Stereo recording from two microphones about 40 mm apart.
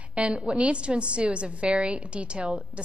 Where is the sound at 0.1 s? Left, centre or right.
Right.